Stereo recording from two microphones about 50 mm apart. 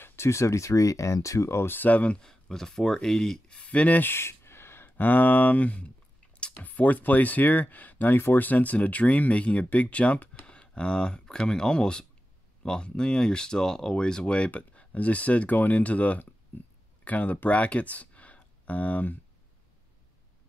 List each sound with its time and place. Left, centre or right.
0.0 s speech: left
1.7 s speech: left
2.2 s speech: centre
3.4 s speech: left
4.0 s a sound: left
4.9 s speech: left
16.5 s speech: left
17.0 s speech: left